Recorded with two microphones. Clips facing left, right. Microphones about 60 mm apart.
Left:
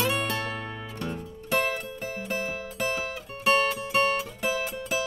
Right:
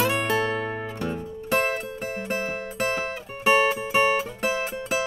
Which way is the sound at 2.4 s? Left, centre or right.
Right.